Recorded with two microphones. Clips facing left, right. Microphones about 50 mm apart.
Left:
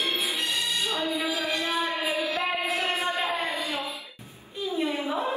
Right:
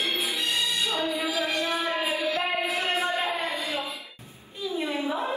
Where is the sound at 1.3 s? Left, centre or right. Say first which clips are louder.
Right 1 dB; right.